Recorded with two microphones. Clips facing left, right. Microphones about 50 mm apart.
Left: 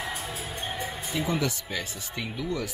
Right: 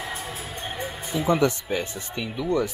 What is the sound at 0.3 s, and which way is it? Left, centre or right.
Music, right.